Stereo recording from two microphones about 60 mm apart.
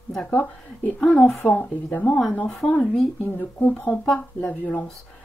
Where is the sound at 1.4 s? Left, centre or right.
Left.